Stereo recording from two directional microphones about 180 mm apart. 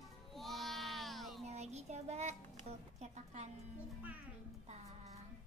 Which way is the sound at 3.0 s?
40° right (ahead or behind).